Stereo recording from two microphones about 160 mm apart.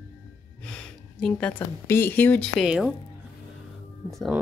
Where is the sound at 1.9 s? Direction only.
15° left (ahead or behind); by 2.9 s centre (ahead or behind).